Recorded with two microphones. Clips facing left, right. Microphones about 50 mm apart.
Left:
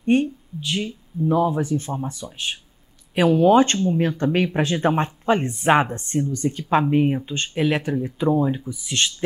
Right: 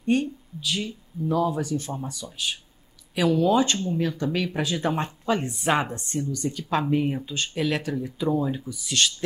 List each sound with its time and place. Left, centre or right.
0.0 s speech: left